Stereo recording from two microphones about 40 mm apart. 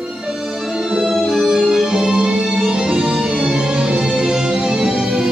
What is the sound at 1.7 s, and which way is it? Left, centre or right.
Music, centre.